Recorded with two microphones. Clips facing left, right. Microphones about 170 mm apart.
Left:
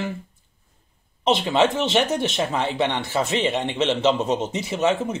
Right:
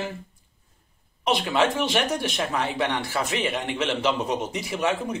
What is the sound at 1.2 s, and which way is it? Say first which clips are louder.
Speech: left 3 dB; 25° left (ahead or behind).